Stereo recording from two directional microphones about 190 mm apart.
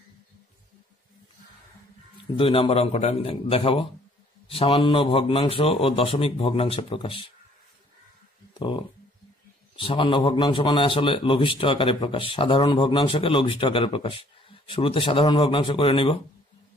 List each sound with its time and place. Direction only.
2.3 s a man's voice: 30° left (ahead or behind)
8.5 s a man's voice: 25° left (ahead or behind)